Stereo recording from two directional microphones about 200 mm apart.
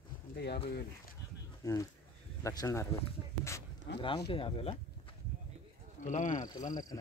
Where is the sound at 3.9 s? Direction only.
60° left (ahead or behind).